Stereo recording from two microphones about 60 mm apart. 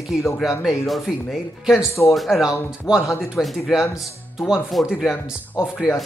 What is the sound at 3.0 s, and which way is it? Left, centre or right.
Speech, left.